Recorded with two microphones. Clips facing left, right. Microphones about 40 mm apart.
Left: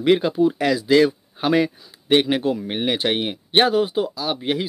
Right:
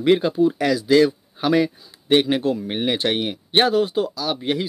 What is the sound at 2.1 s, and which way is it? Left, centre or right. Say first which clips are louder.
Speech: even; left.